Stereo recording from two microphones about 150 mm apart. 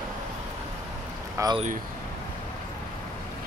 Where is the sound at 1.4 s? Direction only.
20° right (ahead or behind).